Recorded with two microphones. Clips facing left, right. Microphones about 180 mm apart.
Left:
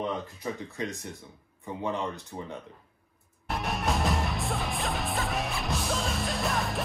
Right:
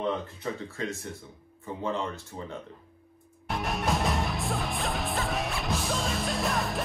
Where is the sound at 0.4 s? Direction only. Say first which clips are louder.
Even; 15° left (ahead or behind).